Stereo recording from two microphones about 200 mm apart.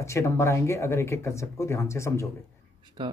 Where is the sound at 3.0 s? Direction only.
20° right (ahead or behind).